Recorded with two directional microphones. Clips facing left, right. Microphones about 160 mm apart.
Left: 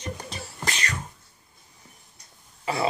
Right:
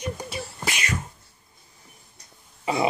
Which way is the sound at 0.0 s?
10° right (ahead or behind).